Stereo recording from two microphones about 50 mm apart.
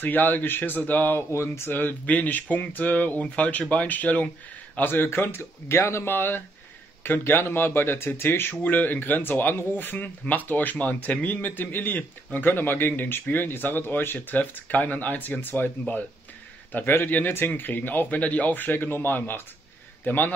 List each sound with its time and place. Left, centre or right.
0.0 s speech: left
1.3 s speech: left
1.7 s speech: left
4.7 s speech: left
6.1 s speech: left
9.9 s speech: left
16.7 s speech: left